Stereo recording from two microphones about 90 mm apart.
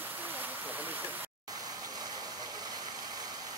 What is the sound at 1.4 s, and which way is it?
Waterfall, 45° right (ahead or behind).